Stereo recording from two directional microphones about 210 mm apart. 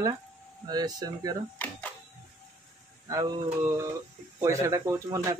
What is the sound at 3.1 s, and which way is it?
Speech, 15° right (ahead or behind).